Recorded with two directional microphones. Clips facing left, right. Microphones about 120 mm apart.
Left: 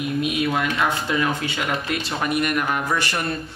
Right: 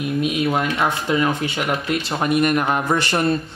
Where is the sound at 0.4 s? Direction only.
25° right (ahead or behind).